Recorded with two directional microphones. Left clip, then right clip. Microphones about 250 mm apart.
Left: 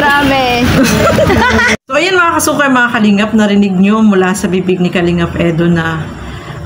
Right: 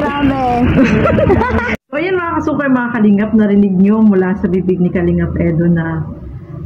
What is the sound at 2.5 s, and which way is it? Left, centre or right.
Speech, centre.